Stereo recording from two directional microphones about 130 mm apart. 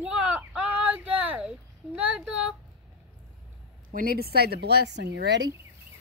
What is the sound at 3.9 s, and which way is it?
Speech, 90° right.